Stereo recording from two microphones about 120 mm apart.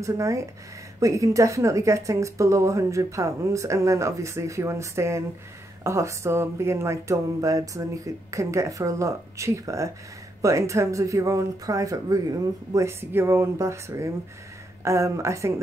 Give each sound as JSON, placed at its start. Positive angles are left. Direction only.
{"t": 0.0, "sound": "speech", "side_deg": -25}